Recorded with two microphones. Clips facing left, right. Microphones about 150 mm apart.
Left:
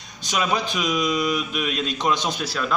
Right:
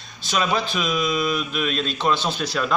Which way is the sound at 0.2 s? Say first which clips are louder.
Right 1 dB; 15° left (ahead or behind).